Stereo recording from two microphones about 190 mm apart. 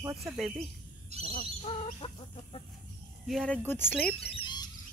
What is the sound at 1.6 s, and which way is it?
Chicken, 30° left (ahead or behind).